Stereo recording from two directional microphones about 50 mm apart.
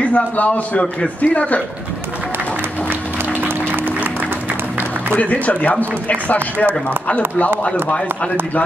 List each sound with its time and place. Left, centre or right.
0.0 s speech: left
2.9 s a sound: right
5.1 s speech: left